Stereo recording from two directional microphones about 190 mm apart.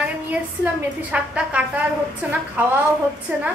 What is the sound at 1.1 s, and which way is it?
A woman's voice, 5° right (ahead or behind).